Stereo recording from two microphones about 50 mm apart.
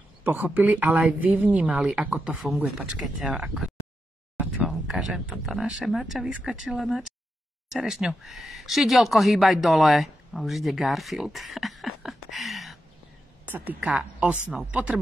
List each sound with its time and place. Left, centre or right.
0.2 s a man's voice: right
1.6 s speech: centre
2.0 s a man's voice: right
2.4 s speech: centre
2.9 s speech: centre
4.6 s a sound: centre
5.5 s speech: centre
11.3 s a sound: centre
13.7 s speech: right
14.2 s speech: centre
14.7 s speech: right